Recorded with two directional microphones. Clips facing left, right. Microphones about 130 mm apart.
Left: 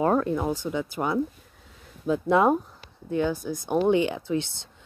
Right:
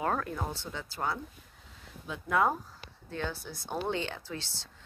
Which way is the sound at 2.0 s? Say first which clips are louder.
Left 16 dB; 40° left (ahead or behind).